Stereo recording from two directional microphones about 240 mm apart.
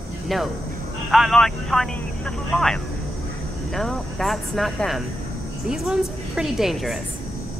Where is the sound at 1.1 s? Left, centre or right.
Centre.